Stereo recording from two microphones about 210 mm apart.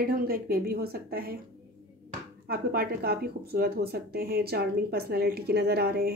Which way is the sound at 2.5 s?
50° right (ahead or behind).